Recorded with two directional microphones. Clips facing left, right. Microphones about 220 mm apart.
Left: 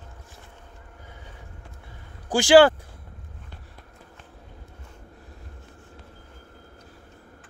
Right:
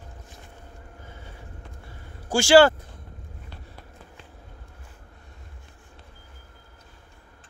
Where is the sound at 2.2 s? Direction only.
15° left (ahead or behind).